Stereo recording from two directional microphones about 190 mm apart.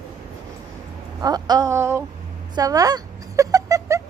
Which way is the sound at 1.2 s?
20° right (ahead or behind).